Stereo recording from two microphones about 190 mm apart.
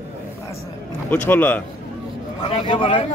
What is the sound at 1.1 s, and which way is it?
Speech, 10° left (ahead or behind).